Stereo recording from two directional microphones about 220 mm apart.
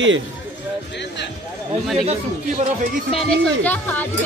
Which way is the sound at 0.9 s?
50° left (ahead or behind).